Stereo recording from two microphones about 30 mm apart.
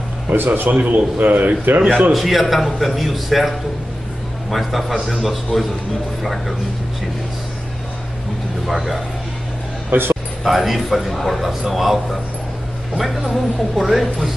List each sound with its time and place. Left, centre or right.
0.3 s a man's voice: right
0.7 s a man's voice: right
2.1 s a man's voice: centre
8.6 s a man's voice: centre
9.9 s speech: right
10.4 s a man's voice: centre